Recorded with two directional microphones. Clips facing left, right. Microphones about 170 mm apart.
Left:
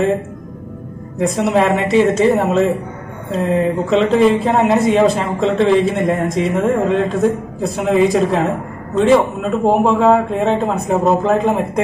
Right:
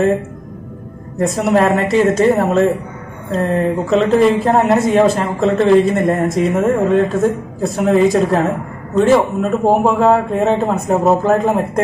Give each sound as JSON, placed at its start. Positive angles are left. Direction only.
{"t": 1.2, "sound": "speech", "side_deg": 0}